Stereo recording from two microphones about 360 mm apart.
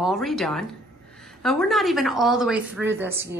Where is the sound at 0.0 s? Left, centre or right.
Centre.